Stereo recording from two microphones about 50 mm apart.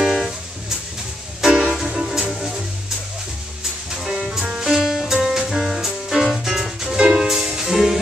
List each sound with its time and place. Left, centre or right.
0.0 s music: centre
1.5 s music: right
1.8 s music: centre
3.9 s music: centre